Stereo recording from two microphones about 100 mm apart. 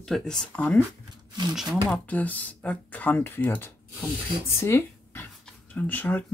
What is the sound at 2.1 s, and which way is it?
Speech, 15° left (ahead or behind).